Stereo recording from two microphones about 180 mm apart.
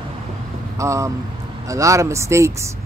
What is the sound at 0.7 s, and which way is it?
Speech, 15° right (ahead or behind).